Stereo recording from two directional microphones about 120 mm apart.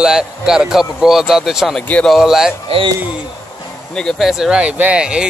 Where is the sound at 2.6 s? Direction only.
50° right (ahead or behind).